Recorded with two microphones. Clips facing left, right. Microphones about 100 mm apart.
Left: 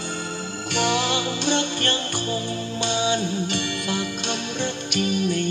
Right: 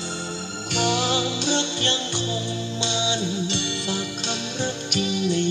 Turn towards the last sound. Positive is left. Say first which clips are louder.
# even
turn(degrees=50)  # may be behind; listen again after turning